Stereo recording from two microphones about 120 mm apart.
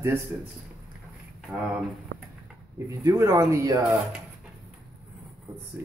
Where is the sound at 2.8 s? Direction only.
25° right (ahead or behind).